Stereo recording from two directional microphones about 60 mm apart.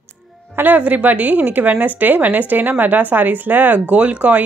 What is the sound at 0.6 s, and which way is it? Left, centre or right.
A woman's voice, right.